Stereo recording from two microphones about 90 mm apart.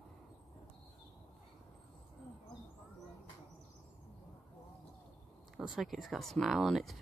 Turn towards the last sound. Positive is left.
turn(degrees=0)  # may be behind; listen again after turning